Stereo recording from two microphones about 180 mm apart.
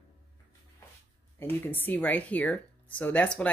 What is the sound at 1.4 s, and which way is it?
Speech, 10° left (ahead or behind).